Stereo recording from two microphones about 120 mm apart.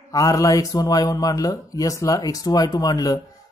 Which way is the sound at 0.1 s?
30° left (ahead or behind).